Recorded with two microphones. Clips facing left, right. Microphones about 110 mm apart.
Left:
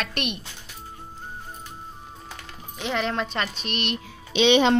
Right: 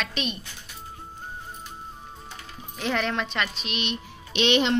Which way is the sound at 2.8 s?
25° left (ahead or behind).